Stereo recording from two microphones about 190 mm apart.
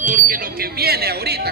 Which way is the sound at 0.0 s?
45° right (ahead or behind).